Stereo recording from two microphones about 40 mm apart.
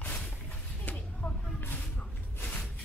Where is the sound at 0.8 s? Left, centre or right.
Left.